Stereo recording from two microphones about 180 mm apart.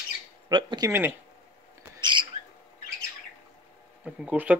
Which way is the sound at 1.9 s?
25° right (ahead or behind).